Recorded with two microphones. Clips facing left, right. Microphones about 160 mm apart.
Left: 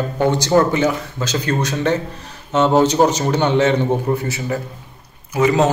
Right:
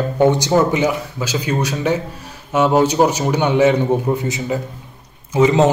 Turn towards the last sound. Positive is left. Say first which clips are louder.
# right 2 dB
turn(degrees=-20)  # may be behind; listen again after turning